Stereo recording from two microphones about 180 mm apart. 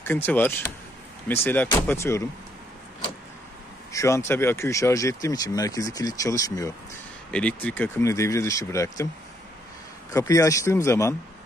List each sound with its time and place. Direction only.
0.0 s speech: 10° left (ahead or behind)
3.9 s speech: 15° left (ahead or behind)
7.2 s speech: 5° left (ahead or behind)
10.1 s speech: 20° left (ahead or behind)